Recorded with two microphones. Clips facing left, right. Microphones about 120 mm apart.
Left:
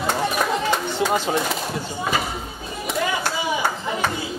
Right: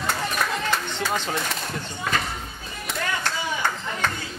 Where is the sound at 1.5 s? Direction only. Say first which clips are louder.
Left 5 dB; 5° left (ahead or behind).